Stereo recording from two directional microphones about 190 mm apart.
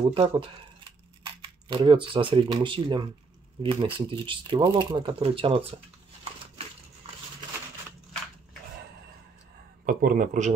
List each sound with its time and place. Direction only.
0.1 s speech: 30° right (ahead or behind)
9.8 s speech: 45° right (ahead or behind)